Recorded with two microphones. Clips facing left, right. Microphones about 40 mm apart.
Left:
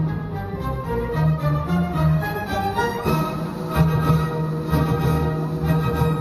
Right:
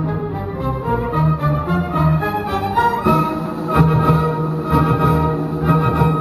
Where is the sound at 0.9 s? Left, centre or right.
Right.